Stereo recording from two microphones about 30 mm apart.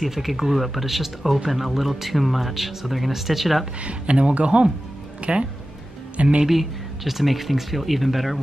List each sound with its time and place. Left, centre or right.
0.0 s speech: centre
3.8 s speech: right
6.5 s speech: centre